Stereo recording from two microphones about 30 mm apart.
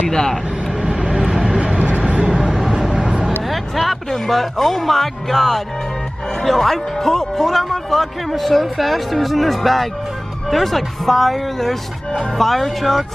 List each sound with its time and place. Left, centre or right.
0.1 s speech: centre
0.8 s vehicle: right
2.4 s vehicle: centre
2.9 s vehicle: right
3.4 s music: centre
4.1 s speech: centre